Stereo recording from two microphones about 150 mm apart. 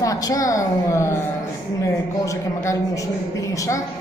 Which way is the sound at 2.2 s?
20° left (ahead or behind).